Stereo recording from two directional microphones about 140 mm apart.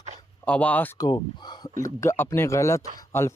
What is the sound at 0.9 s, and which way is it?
Speech, 30° left (ahead or behind).